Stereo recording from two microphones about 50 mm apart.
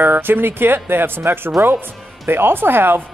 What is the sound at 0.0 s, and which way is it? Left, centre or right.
Speech, right.